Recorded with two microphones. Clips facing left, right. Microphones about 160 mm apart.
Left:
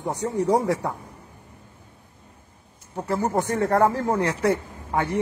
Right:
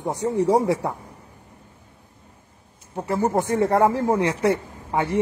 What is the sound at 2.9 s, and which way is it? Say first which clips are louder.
Speech: right 2 dB; 10° right (ahead or behind).